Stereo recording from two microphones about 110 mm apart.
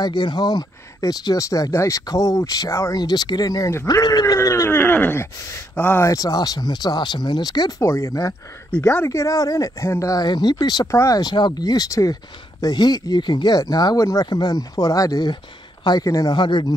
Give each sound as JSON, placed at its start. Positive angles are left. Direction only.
{"t": 0.0, "sound": "speech", "side_deg": 45}
{"t": 6.0, "sound": "speech", "side_deg": 35}